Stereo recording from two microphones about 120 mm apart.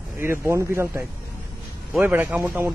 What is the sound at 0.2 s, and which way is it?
A man's voice, 20° right (ahead or behind).